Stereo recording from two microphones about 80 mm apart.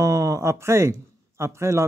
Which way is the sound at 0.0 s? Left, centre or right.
Right.